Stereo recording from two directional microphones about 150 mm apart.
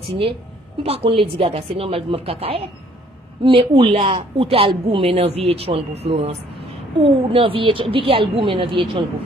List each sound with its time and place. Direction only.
0.1 s speech: 35° right (ahead or behind)